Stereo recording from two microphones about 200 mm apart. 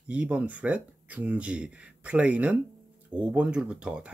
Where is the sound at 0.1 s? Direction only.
5° right (ahead or behind).